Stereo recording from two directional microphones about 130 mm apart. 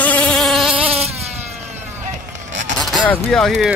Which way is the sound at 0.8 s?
50° right (ahead or behind).